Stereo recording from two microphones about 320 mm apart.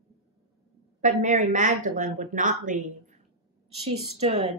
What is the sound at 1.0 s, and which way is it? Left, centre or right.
A woman's voice, right.